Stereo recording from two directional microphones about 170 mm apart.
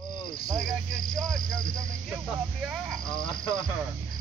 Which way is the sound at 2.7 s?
Centre (ahead or behind).